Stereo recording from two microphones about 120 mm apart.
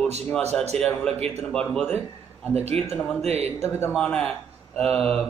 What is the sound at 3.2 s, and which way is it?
Speech, 60° right (ahead or behind).